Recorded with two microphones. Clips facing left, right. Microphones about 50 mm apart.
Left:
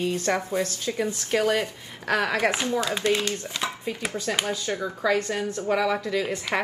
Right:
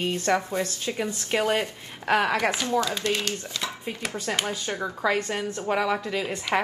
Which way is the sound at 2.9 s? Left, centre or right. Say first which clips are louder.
Left 3 dB; left.